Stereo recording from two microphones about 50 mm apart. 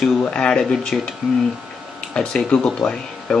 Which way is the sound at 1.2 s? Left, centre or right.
Centre.